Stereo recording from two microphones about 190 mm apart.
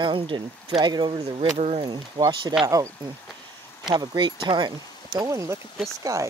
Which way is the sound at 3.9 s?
20° right (ahead or behind).